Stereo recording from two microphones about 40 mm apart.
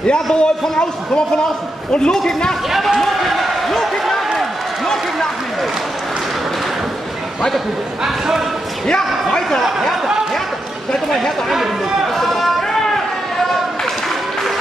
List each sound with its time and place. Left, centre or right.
0.0 s a man's voice: left
2.7 s speech: centre
3.0 s basketball bounce: centre
4.4 s a sound: centre
8.8 s a man's voice: centre
10.9 s speech: centre
12.2 s run: centre